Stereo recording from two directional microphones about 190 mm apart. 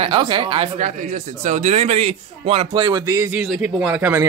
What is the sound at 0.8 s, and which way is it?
A man's voice, 40° right (ahead or behind).